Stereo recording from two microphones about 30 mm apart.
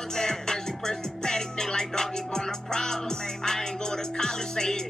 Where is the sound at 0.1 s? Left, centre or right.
Centre.